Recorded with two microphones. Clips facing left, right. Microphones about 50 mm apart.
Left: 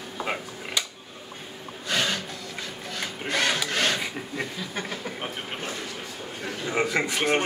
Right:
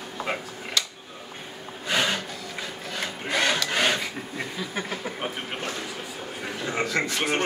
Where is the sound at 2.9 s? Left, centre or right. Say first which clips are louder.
Right 1 dB; centre.